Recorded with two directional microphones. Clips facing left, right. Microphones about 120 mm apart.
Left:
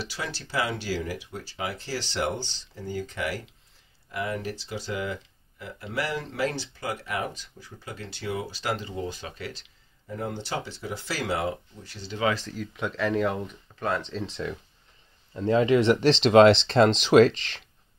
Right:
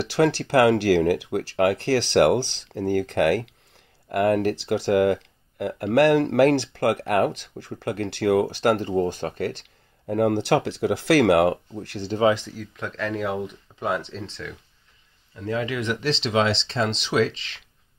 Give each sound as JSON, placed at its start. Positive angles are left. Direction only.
{"t": 0.0, "sound": "speech", "side_deg": -65}
{"t": 12.2, "sound": "speech", "side_deg": -25}
{"t": 12.4, "sound": "speech", "side_deg": 0}
{"t": 15.3, "sound": "speech", "side_deg": 30}
{"t": 16.2, "sound": "speech", "side_deg": 55}